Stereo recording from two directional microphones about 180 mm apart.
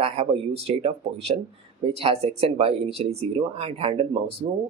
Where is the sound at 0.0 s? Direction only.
35° right (ahead or behind).